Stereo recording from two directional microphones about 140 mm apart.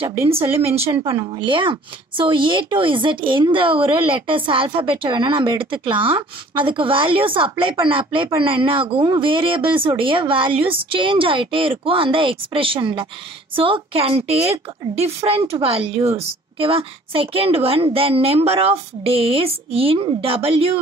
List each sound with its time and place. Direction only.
1.1 s a woman's voice: 35° right (ahead or behind)